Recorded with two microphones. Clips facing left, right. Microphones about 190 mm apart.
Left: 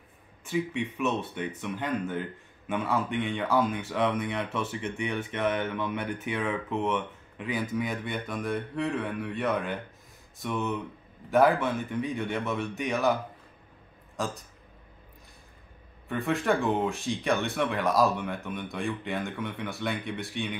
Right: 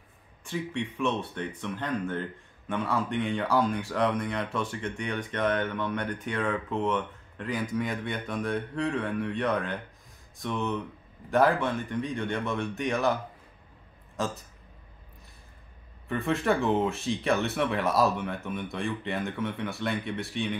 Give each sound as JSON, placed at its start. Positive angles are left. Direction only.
{"t": 0.4, "sound": "speech", "side_deg": 5}
{"t": 14.1, "sound": "a man's voice", "side_deg": 0}
{"t": 16.1, "sound": "speech", "side_deg": 0}